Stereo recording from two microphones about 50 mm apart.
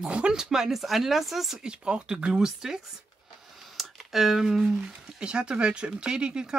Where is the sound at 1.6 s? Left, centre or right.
Centre.